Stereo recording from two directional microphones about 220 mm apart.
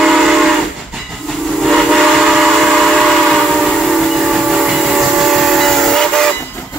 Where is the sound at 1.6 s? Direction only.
Centre (ahead or behind).